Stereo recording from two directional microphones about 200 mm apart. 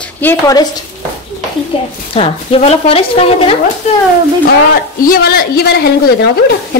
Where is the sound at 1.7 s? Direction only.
25° left (ahead or behind).